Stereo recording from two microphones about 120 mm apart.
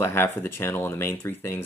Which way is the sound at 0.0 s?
20° left (ahead or behind).